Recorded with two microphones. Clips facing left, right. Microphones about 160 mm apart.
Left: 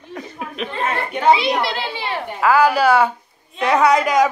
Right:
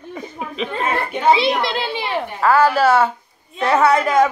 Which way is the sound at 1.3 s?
30° right (ahead or behind).